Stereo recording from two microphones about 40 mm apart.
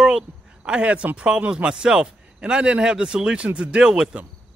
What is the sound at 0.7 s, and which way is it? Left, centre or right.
Speech, right.